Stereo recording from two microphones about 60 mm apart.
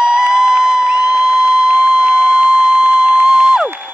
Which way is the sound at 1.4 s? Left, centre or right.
Centre.